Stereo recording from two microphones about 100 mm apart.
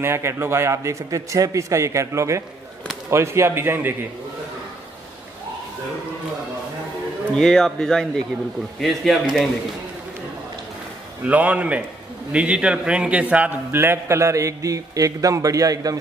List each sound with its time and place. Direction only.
0.0 s a man's voice: 25° right (ahead or behind)
7.3 s speech: 5° left (ahead or behind)
11.2 s a man's voice: 15° right (ahead or behind); by 16.0 s 35° right (ahead or behind)